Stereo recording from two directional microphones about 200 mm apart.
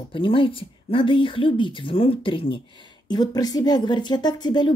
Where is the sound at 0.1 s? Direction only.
25° left (ahead or behind).